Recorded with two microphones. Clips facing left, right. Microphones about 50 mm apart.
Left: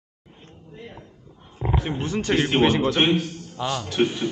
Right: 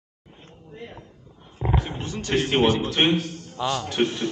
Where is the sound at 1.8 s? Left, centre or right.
Left.